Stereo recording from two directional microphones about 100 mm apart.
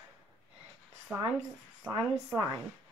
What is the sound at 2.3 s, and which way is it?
Speech, 25° right (ahead or behind).